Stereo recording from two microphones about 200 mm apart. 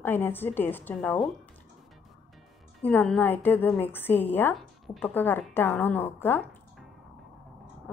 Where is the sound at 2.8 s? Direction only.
5° left (ahead or behind).